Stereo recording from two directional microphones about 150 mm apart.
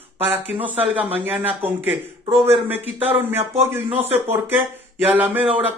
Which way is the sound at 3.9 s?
40° right (ahead or behind).